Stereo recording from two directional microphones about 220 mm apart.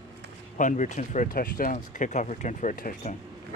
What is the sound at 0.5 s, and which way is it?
Speech, 35° left (ahead or behind).